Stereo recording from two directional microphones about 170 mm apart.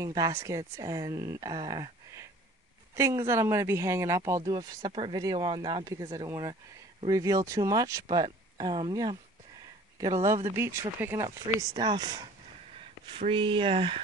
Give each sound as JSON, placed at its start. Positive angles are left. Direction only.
{"t": 0.0, "sound": "speech", "side_deg": -20}